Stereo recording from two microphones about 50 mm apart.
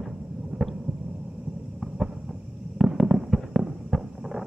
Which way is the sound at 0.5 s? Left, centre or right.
Right.